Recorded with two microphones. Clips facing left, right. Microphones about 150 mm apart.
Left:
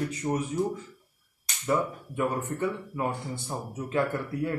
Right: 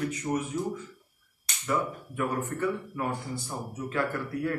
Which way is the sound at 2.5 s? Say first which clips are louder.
Even; 20° left (ahead or behind).